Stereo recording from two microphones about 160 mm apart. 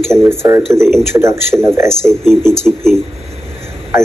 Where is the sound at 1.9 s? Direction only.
5° left (ahead or behind).